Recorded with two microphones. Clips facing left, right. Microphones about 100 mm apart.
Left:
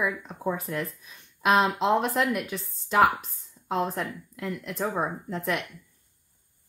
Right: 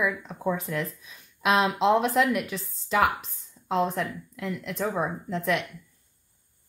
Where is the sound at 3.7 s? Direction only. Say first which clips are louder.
Right 2 dB; centre (ahead or behind).